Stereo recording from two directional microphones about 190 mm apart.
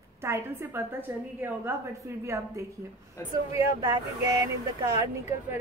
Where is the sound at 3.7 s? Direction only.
20° right (ahead or behind).